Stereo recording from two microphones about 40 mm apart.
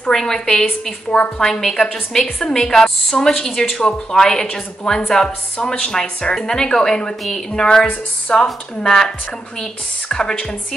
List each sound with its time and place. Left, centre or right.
0.1 s a woman's voice: centre
7.6 s a woman's voice: left
8.8 s a woman's voice: centre